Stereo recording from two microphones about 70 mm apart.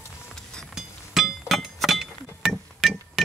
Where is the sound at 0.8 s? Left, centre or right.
Centre.